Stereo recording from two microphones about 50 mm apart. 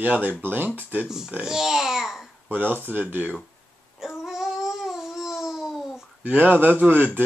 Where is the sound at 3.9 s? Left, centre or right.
Centre.